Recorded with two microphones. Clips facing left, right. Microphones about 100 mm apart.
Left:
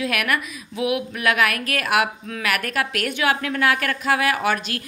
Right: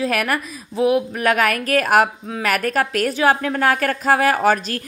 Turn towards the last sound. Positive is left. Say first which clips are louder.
# right 5 dB
turn(degrees=-40)  # may be behind; listen again after turning